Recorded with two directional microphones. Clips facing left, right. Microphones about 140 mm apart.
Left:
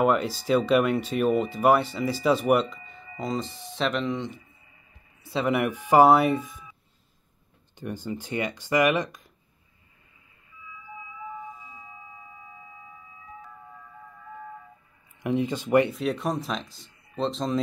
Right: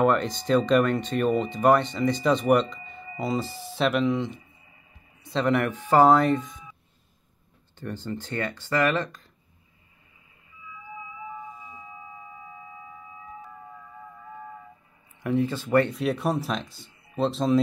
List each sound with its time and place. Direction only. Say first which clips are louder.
0.0 s speech: right 1 dB; 5° left (ahead or behind)
7.7 s speech: even; 15° left (ahead or behind)
15.2 s speech: right 1 dB; 15° left (ahead or behind)
15.9 s speech: right 2 dB; centre (ahead or behind)